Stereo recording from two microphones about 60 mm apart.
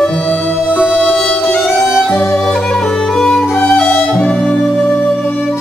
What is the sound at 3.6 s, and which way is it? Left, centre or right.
Music, left.